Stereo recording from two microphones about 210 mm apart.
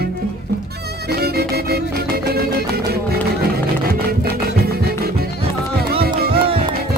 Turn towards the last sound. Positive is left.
turn(degrees=-25)  # may be behind; listen again after turning